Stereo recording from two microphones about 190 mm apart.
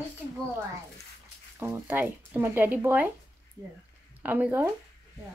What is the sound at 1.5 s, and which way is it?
Speech, 10° right (ahead or behind).